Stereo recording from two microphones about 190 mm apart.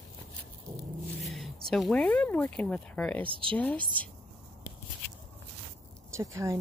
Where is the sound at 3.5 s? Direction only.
5° left (ahead or behind).